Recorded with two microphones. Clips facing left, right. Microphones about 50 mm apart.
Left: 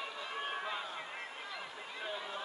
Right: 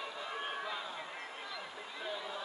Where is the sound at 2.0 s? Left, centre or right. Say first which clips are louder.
Even; left.